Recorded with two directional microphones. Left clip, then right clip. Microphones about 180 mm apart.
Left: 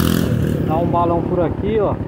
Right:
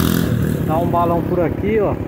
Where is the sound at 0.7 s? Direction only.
10° right (ahead or behind).